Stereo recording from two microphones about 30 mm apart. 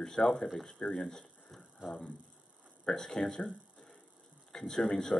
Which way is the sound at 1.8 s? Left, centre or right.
Right.